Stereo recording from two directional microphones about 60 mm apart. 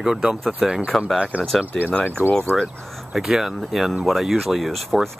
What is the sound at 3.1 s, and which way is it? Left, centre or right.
Speech, centre.